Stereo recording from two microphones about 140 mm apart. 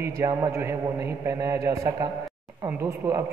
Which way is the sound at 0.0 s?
25° right (ahead or behind).